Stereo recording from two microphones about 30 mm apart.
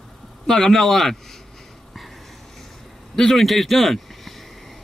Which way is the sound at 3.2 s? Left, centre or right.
Centre.